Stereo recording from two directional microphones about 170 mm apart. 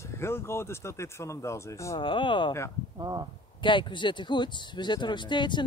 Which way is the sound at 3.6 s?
30° left (ahead or behind).